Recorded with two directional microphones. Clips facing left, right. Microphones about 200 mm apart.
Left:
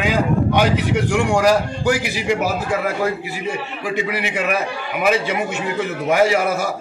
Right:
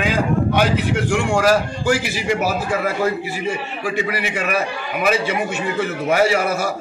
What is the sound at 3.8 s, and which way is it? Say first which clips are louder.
Speech: even; 20° left (ahead or behind).